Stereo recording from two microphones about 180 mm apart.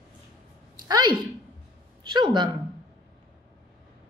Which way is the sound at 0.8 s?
25° right (ahead or behind).